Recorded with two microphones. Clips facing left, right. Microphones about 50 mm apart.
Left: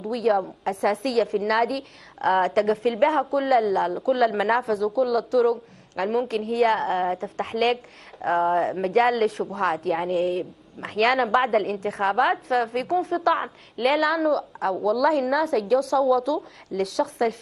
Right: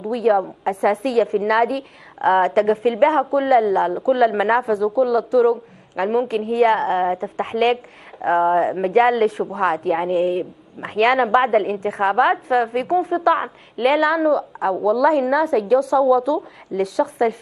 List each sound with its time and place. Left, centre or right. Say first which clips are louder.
0.0 s a woman's voice: right 4 dB; centre